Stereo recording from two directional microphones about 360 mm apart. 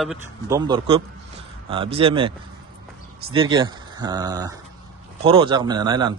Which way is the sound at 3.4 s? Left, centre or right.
Centre.